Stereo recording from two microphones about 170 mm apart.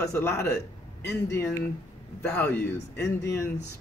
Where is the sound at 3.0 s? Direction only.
20° left (ahead or behind).